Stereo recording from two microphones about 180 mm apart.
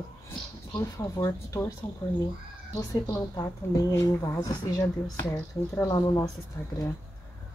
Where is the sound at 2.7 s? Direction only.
20° left (ahead or behind).